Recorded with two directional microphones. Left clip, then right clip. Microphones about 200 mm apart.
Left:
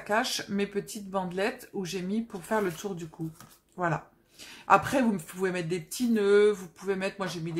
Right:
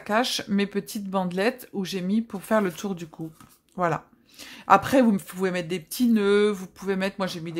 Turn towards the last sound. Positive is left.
turn(degrees=-45)  # may be behind; listen again after turning